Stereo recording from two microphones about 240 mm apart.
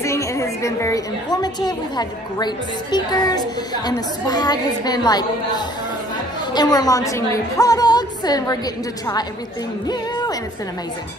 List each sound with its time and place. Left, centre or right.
0.0 s a woman's voice: centre
9.8 s music: centre